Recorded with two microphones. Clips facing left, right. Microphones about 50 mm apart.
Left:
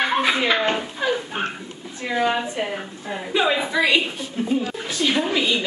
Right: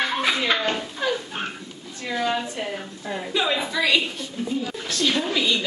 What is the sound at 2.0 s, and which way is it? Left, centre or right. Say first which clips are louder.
A woman's voice: left 3 dB; centre.